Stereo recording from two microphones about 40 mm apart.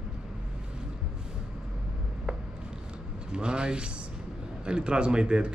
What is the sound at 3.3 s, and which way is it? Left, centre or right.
Speech, right.